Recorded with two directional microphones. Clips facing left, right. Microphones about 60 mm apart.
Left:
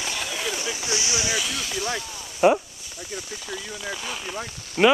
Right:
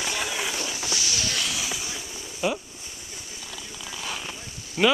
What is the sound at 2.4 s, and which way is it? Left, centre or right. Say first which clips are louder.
Speech: left 9 dB; left.